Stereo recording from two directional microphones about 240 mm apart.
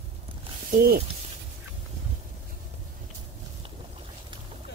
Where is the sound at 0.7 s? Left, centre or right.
Right.